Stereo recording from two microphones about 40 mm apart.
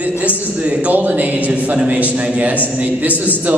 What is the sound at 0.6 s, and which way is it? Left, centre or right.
A man's voice, right.